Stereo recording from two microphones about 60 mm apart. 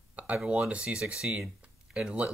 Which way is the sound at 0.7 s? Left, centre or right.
Centre.